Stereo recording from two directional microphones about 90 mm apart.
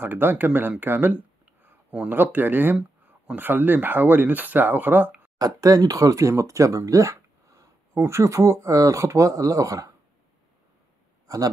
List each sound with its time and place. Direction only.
0.0 s speech: 20° right (ahead or behind)
5.4 s speech: 45° right (ahead or behind)
11.2 s a man's voice: 40° right (ahead or behind)